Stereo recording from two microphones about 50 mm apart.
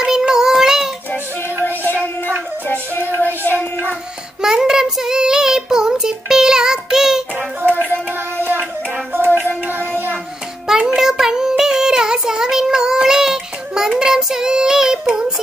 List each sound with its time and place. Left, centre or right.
0.0 s child singing: centre
2.6 s music: left
4.4 s child singing: centre
7.6 s music: right
9.7 s child singing: right
11.0 s child singing: centre